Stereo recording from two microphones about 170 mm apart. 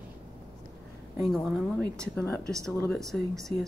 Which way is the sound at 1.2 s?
Centre (ahead or behind).